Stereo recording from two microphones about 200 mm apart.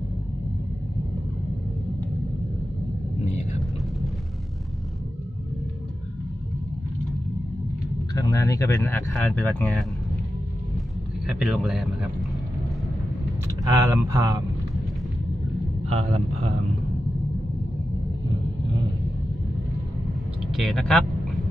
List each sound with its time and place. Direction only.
8.1 s speech: 20° left (ahead or behind)
11.2 s speech: 5° right (ahead or behind)
13.7 s speech: 15° right (ahead or behind)
15.9 s a man's voice: 30° right (ahead or behind)
20.5 s speech: centre (ahead or behind)